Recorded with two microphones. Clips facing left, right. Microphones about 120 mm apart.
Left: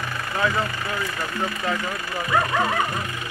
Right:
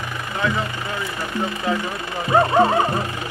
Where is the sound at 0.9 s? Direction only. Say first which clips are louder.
Right 1 dB; 20° right (ahead or behind).